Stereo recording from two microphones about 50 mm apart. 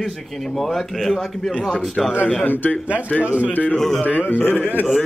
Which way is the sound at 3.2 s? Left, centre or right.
Right.